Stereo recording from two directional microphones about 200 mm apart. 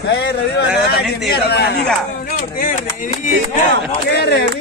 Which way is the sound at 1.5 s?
55° left (ahead or behind).